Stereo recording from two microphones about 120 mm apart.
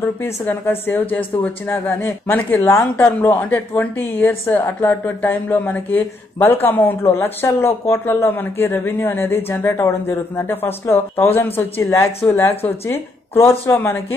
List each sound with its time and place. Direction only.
0.2 s speech: 15° left (ahead or behind)